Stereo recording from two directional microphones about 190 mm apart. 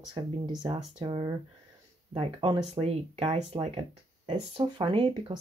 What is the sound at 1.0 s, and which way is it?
Speech, 25° right (ahead or behind).